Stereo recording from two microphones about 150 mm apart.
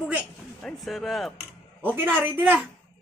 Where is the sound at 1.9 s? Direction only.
10° right (ahead or behind).